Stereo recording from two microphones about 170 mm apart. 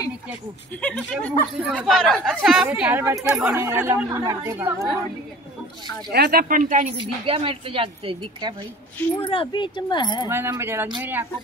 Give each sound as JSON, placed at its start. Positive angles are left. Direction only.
{"t": 0.7, "sound": "speech", "side_deg": 5}
{"t": 1.6, "sound": "speech", "side_deg": -5}
{"t": 6.1, "sound": "speech", "side_deg": -65}
{"t": 7.0, "sound": "a woman's voice", "side_deg": -30}
{"t": 9.2, "sound": "speech", "side_deg": 30}
{"t": 10.2, "sound": "speech", "side_deg": -15}